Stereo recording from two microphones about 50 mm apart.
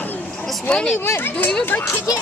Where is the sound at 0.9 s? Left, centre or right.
Left.